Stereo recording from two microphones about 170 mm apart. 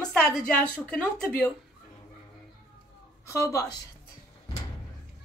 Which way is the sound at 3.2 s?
20° left (ahead or behind).